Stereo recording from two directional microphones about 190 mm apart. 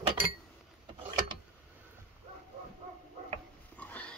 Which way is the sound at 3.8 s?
5° left (ahead or behind).